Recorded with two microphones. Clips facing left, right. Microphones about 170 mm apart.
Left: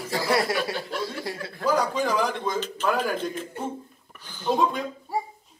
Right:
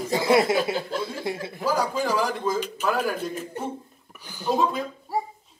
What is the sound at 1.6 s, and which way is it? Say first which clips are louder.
A man's voice: left 1 dB; 5° right (ahead or behind).